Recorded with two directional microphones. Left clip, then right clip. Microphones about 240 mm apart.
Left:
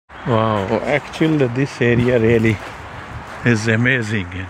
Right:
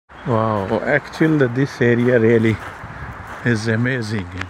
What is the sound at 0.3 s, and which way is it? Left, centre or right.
Speech, centre.